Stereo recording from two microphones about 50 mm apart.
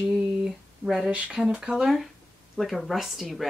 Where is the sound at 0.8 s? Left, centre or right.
Right.